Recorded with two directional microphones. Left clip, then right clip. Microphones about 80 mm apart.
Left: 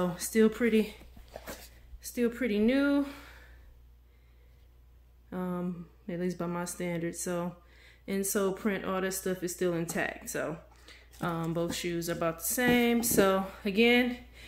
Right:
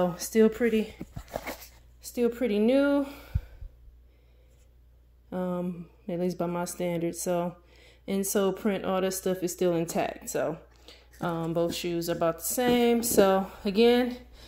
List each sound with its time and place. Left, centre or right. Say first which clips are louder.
0.0 s speech: right 4 dB; right
2.0 s speech: right 4 dB; right
5.3 s speech: right 5 dB; right
10.2 s a sound: right 5 dB; right
11.5 s speech: right 4 dB; centre
13.6 s speech: right 2 dB; right